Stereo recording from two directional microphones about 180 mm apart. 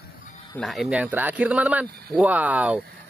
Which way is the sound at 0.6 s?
Centre (ahead or behind).